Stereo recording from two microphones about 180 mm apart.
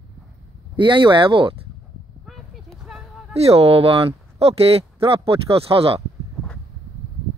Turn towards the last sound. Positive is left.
turn(degrees=-30)  # may be behind; listen again after turning